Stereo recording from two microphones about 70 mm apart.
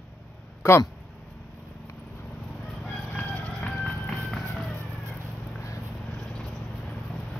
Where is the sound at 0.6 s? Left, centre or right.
Left.